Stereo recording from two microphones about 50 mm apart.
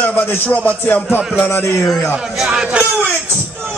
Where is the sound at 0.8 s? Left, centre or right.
Left.